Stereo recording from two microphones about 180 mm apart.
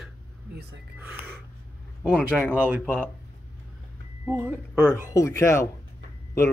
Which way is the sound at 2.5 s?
10° right (ahead or behind).